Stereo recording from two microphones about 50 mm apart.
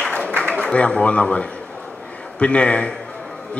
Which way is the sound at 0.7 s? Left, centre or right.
Left.